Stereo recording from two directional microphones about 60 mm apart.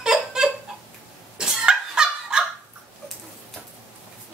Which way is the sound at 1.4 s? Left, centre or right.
Centre.